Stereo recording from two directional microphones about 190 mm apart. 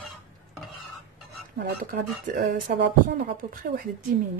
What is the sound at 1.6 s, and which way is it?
Speech, 50° right (ahead or behind).